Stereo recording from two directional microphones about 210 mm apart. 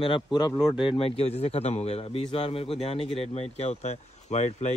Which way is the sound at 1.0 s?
25° left (ahead or behind).